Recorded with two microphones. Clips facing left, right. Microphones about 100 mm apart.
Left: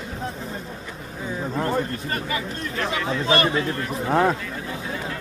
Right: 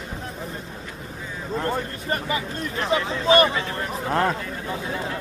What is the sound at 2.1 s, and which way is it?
A man's voice, 25° right (ahead or behind).